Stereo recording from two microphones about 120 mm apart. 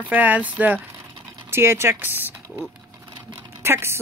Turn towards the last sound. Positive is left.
turn(degrees=-20)  # may be behind; listen again after turning